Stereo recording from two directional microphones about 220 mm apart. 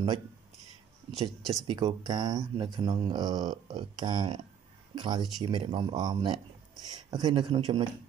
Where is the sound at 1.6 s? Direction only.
20° right (ahead or behind).